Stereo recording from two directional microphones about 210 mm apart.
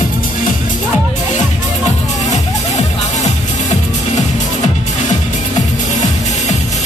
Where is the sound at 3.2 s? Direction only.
35° left (ahead or behind).